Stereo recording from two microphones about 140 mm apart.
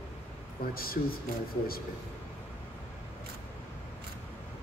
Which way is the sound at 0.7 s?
90° left.